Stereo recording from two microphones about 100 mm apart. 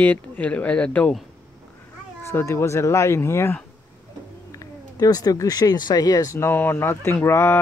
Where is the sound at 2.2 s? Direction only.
25° left (ahead or behind).